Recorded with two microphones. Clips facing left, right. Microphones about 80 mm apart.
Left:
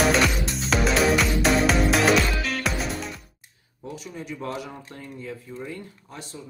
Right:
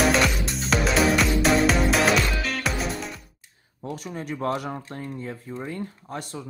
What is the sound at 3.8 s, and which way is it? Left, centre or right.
Speech, right.